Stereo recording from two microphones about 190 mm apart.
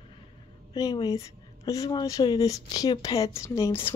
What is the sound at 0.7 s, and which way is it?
Speech, 20° left (ahead or behind).